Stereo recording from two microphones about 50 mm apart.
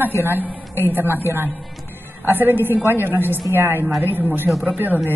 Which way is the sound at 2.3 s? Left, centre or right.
Right.